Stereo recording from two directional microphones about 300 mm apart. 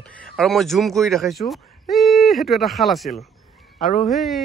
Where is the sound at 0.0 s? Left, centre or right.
Centre.